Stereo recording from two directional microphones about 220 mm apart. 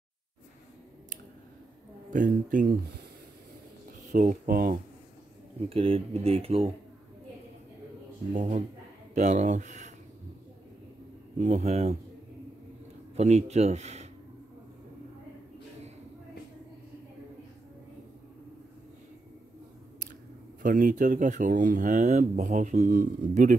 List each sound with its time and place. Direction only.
2.1 s speech: 35° right (ahead or behind)
4.1 s speech: 35° right (ahead or behind)
5.7 s speech: 25° right (ahead or behind)
8.3 s speech: 35° right (ahead or behind)
11.3 s speech: 35° right (ahead or behind)
13.1 s speech: 30° right (ahead or behind)
20.6 s speech: 35° right (ahead or behind)